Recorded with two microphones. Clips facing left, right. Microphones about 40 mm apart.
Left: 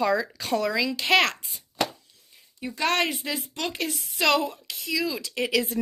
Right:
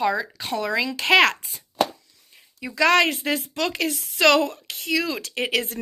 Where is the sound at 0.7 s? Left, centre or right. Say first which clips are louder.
Right 6 dB; right.